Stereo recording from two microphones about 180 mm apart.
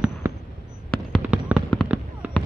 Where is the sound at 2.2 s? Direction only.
10° right (ahead or behind).